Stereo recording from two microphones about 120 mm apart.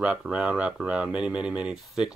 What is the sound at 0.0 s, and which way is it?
Speech, 10° right (ahead or behind).